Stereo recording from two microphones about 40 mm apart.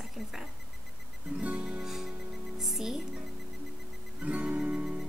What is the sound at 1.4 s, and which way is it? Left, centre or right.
Music, right.